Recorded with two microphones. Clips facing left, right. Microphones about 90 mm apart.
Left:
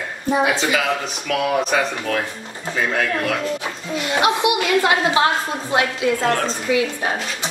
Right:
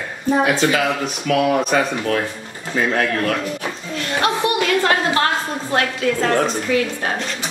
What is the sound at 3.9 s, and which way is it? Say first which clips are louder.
A woman's voice: left 2 dB; 15° left (ahead or behind).